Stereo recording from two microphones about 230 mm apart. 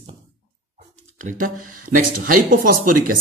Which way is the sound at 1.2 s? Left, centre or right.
Right.